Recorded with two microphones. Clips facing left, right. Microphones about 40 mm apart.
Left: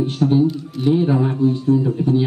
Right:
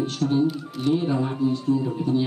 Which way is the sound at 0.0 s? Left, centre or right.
Left.